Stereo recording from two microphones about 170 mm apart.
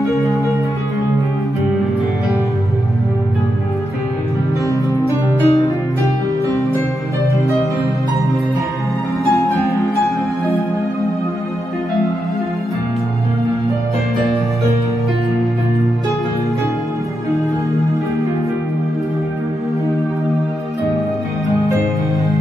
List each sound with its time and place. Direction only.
4.9 s music: 20° left (ahead or behind)